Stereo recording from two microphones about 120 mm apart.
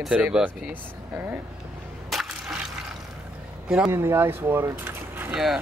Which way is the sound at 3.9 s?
20° right (ahead or behind).